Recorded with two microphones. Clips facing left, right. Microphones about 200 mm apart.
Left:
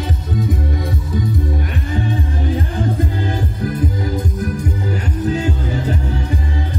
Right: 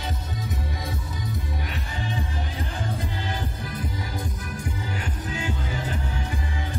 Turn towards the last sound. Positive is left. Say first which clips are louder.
# left 9 dB
turn(degrees=40)  # may be behind; listen again after turning